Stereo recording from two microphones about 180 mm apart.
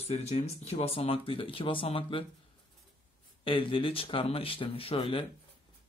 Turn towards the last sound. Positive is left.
turn(degrees=30)  # may be behind; listen again after turning